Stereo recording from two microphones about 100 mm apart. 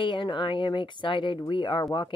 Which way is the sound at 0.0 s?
55° left (ahead or behind).